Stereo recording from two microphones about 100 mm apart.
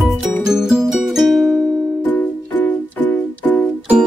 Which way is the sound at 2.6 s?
15° left (ahead or behind).